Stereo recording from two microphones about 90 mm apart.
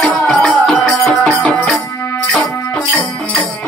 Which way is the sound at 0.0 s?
5° left (ahead or behind).